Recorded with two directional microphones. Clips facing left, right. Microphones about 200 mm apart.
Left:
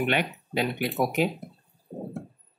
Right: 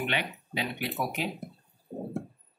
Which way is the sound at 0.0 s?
50° left (ahead or behind).